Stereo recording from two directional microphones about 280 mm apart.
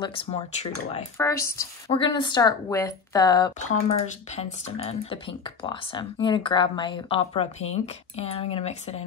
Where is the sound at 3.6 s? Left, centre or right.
Left.